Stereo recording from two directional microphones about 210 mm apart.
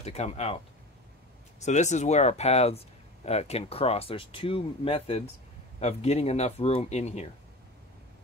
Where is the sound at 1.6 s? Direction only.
35° left (ahead or behind).